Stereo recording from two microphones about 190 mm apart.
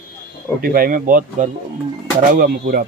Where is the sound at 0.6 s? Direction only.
50° right (ahead or behind).